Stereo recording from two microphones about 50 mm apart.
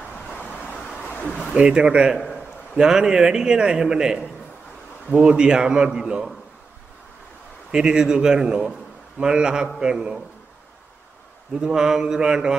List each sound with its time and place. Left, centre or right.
1.5 s a man's voice: centre
7.7 s a man's voice: centre
11.6 s a man's voice: centre